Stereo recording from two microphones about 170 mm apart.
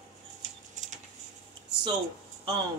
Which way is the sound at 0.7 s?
45° right (ahead or behind).